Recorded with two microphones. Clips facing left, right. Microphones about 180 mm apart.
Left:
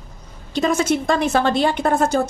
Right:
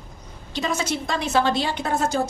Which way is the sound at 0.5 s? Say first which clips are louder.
Left 7 dB; 50° left (ahead or behind).